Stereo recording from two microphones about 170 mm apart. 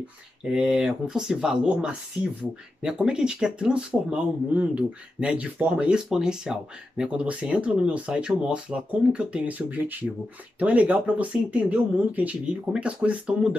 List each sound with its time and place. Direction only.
0.4 s speech: 5° right (ahead or behind)